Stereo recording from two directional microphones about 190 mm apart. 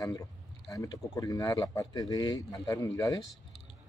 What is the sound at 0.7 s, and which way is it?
Speech, 20° left (ahead or behind).